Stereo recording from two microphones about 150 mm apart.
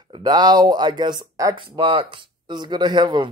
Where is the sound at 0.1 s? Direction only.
30° right (ahead or behind).